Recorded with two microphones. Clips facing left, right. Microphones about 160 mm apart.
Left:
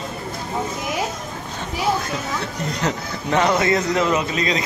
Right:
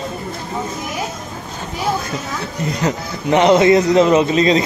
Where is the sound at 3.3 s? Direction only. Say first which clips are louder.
Right 7 dB; 20° right (ahead or behind).